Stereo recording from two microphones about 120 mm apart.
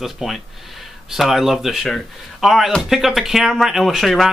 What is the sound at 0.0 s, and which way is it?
Speech, centre (ahead or behind).